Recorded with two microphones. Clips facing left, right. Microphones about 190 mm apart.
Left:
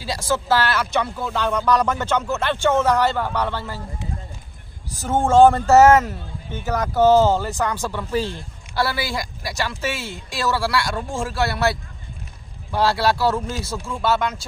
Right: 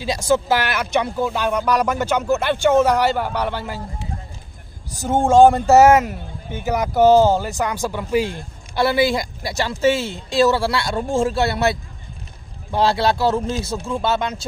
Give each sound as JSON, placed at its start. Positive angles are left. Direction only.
{"t": 0.0, "sound": "speech", "side_deg": -20}
{"t": 5.0, "sound": "speech", "side_deg": -15}